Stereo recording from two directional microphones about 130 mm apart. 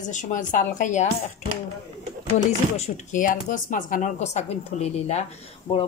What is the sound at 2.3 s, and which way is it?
A woman's voice, 65° left (ahead or behind).